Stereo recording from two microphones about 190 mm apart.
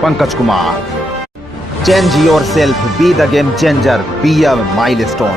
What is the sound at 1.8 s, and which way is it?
Speech, centre (ahead or behind).